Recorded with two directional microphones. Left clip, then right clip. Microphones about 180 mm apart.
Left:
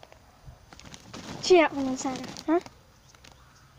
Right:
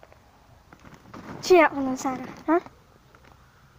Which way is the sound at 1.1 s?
30° left (ahead or behind).